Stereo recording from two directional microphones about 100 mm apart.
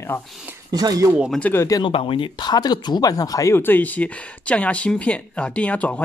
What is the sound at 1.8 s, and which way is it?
Speech, 60° left (ahead or behind).